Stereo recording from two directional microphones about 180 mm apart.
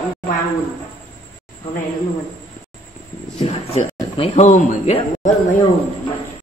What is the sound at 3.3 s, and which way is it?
Speech, 30° left (ahead or behind).